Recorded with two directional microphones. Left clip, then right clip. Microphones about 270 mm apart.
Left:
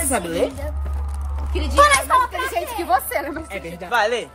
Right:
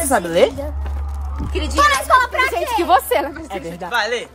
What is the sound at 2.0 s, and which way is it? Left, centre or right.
Speech, right.